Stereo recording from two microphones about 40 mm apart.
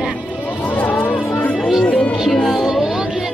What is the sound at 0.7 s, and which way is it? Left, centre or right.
Music, left.